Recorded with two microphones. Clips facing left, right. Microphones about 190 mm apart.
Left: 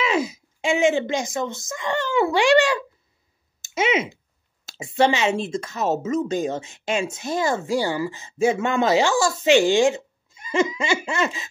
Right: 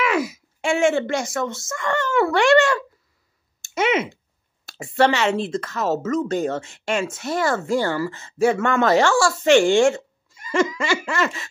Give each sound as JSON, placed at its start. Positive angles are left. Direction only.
{"t": 0.0, "sound": "speech", "side_deg": 20}
{"t": 3.7, "sound": "speech", "side_deg": -60}
{"t": 4.9, "sound": "speech", "side_deg": 15}
{"t": 5.7, "sound": "laughter", "side_deg": 20}
{"t": 6.4, "sound": "speech", "side_deg": 15}
{"t": 10.5, "sound": "laughter", "side_deg": 20}